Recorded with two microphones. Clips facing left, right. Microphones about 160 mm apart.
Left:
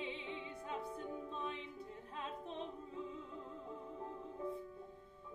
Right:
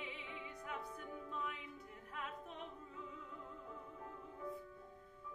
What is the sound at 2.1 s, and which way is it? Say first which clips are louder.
Opera: left 3 dB; 30° left (ahead or behind).